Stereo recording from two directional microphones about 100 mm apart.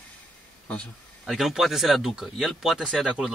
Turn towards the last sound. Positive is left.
turn(degrees=-5)  # may be behind; listen again after turning